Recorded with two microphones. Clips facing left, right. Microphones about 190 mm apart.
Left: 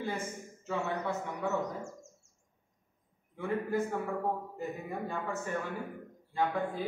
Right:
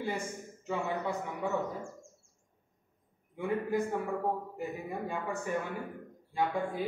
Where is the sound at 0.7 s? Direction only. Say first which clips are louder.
Even; 10° right (ahead or behind).